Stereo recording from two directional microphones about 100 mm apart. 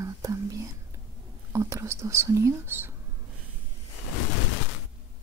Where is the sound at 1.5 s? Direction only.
30° right (ahead or behind).